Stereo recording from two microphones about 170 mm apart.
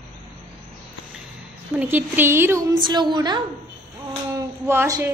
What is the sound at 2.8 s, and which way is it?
Speech, 25° right (ahead or behind).